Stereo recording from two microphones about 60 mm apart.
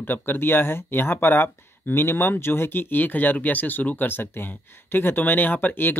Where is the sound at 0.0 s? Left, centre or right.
Left.